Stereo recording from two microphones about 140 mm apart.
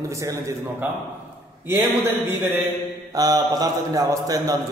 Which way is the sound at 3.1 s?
25° right (ahead or behind).